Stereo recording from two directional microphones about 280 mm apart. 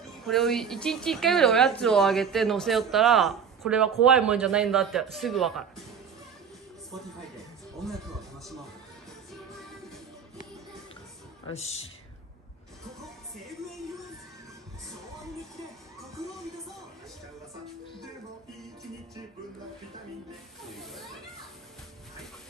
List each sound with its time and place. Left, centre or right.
0.2 s a woman's voice: centre
7.8 s music: centre
11.4 s speech: left
20.6 s snake: centre